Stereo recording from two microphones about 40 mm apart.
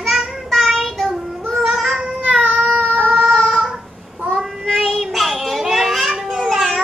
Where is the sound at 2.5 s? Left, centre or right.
Right.